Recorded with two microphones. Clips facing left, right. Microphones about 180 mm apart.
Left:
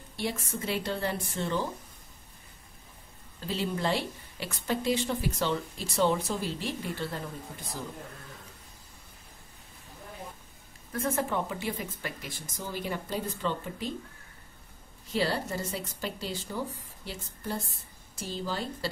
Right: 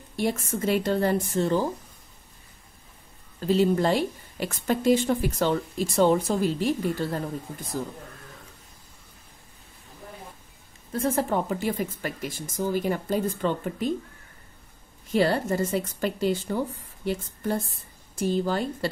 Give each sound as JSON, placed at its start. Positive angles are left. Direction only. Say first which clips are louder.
{"t": 0.1, "sound": "a woman's voice", "louder": "right 7 dB", "side_deg": -45}
{"t": 3.4, "sound": "a woman's voice", "louder": "right 9 dB", "side_deg": -45}
{"t": 10.9, "sound": "a woman's voice", "louder": "right 5 dB", "side_deg": -30}
{"t": 15.1, "sound": "a woman's voice", "louder": "right 7 dB", "side_deg": -55}